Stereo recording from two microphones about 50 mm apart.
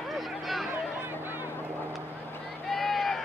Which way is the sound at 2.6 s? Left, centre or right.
Centre.